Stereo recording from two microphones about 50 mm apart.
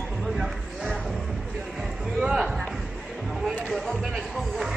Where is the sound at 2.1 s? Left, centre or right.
Centre.